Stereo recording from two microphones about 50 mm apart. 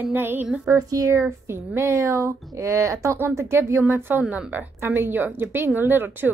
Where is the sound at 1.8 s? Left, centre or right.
Right.